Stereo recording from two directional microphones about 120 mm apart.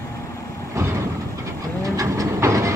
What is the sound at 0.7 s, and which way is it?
Vehicle, 25° right (ahead or behind).